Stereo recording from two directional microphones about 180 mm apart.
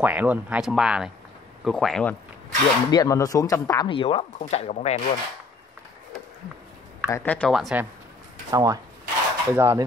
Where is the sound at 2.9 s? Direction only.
20° left (ahead or behind); by 5.0 s 35° left (ahead or behind).